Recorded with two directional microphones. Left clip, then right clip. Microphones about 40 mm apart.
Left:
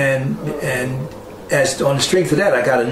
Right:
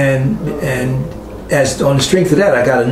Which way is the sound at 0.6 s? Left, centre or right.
Left.